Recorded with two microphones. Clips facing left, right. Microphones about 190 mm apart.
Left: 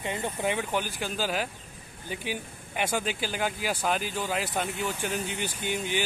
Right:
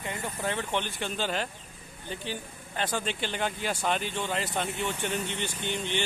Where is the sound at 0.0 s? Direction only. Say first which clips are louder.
Left 3 dB; 20° left (ahead or behind).